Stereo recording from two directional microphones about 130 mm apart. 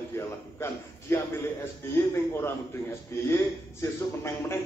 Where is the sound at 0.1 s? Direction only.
20° left (ahead or behind).